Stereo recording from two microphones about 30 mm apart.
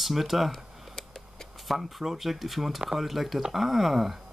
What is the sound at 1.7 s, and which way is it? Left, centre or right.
Speech, centre.